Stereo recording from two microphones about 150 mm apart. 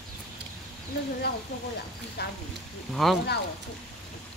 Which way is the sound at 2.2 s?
90° left.